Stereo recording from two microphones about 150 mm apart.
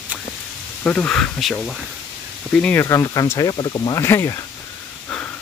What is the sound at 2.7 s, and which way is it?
Speech, 20° left (ahead or behind).